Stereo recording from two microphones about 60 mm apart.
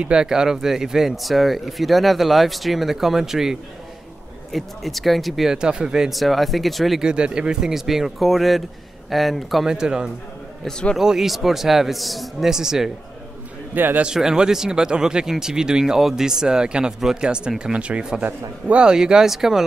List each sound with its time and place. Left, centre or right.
0.0 s speech: centre
5.6 s speech: centre
7.0 s speech: centre
9.7 s speech: centre
13.7 s a man's voice: right
14.0 s speech: centre